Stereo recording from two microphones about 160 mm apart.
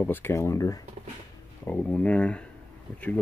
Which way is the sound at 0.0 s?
10° left (ahead or behind).